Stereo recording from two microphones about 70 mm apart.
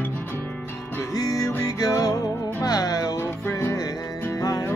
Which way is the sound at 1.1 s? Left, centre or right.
Left.